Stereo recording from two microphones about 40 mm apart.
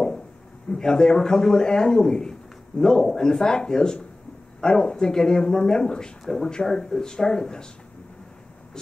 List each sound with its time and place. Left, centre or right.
0.7 s a man's voice: centre